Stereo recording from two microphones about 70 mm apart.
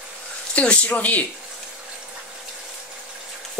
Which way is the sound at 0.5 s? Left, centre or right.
Centre.